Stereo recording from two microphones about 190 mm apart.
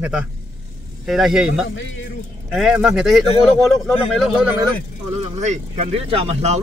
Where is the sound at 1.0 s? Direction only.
Centre (ahead or behind).